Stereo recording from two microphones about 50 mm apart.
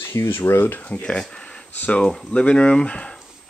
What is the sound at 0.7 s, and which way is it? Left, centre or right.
Speech, left.